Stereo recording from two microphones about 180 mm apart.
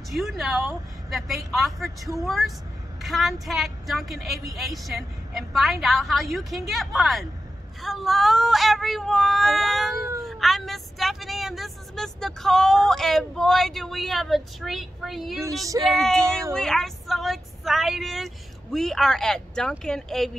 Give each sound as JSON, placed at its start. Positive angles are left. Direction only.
{"t": 0.1, "sound": "speech", "side_deg": 0}
{"t": 15.4, "sound": "speech", "side_deg": -20}
{"t": 15.8, "sound": "speech", "side_deg": 0}